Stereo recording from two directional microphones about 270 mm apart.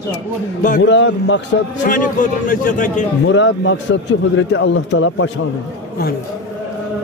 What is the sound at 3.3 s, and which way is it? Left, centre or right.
A man's voice, left.